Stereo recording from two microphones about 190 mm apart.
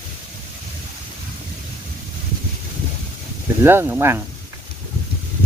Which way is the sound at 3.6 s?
10° right (ahead or behind).